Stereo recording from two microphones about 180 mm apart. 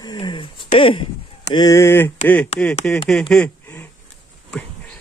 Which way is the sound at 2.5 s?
35° left (ahead or behind).